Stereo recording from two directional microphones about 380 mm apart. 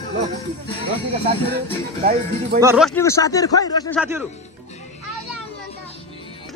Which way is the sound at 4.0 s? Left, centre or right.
Centre.